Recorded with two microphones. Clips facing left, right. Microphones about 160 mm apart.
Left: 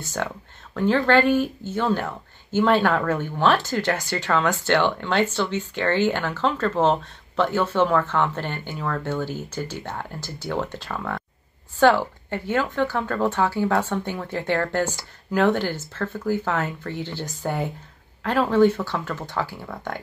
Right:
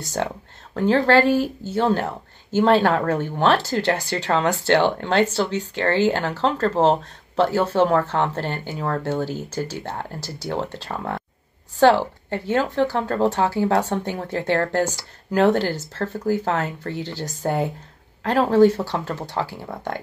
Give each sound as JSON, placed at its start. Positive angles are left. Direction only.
{"t": 0.0, "sound": "speech", "side_deg": -40}
{"t": 12.5, "sound": "speech", "side_deg": -40}